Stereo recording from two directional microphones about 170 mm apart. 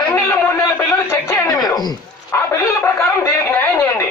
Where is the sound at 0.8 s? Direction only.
15° left (ahead or behind).